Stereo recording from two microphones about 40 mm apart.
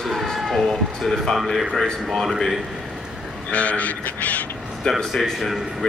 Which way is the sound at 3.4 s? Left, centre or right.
Left.